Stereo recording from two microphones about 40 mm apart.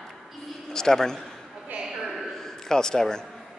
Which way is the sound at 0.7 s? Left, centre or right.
Centre.